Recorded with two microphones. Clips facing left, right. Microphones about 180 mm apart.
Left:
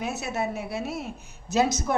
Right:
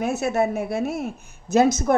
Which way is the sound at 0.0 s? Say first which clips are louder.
Right 7 dB; 50° right (ahead or behind).